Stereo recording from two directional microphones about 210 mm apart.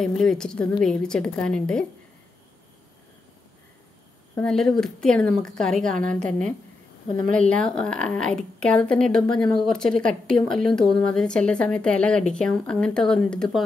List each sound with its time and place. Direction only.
0.0 s a woman's voice: centre (ahead or behind)
4.4 s a woman's voice: centre (ahead or behind)
6.1 s a woman's voice: 35° right (ahead or behind)
7.3 s a woman's voice: 5° left (ahead or behind)